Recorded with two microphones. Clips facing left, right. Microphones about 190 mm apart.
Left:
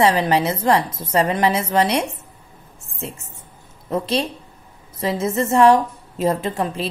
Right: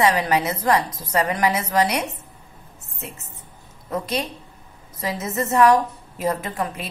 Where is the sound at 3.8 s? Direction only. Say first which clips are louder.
Left 4 dB; 30° left (ahead or behind).